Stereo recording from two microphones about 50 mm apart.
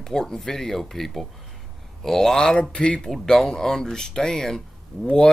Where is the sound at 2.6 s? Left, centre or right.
Left.